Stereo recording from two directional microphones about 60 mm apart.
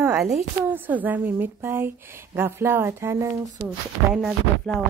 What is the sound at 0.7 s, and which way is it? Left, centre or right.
Speech, right.